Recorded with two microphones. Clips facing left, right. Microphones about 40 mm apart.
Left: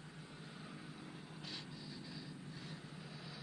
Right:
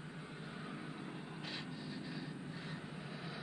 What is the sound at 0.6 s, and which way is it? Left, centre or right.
Vehicle, right.